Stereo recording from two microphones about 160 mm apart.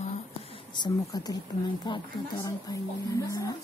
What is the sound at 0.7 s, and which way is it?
Speech, 25° left (ahead or behind).